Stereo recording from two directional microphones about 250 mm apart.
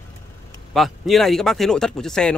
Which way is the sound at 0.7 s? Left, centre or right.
Centre.